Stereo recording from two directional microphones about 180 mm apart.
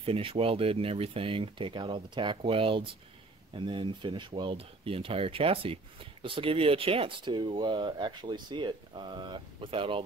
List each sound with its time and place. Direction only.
0.0 s speech: 30° right (ahead or behind)